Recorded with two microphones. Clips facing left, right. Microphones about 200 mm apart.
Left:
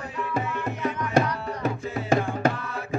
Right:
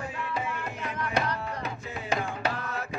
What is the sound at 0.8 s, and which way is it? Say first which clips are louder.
Music: left 6 dB; 45° left (ahead or behind).